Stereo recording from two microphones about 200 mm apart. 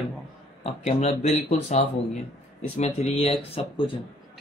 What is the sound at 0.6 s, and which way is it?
Speech, 30° left (ahead or behind).